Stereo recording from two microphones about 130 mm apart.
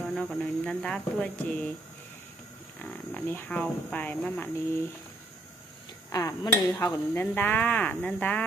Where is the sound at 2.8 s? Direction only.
10° left (ahead or behind).